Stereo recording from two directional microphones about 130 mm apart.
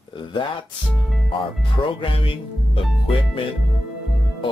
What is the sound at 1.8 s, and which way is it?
Speech, 40° left (ahead or behind).